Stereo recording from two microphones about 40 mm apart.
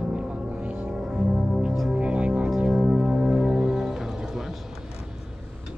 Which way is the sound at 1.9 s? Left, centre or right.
Right.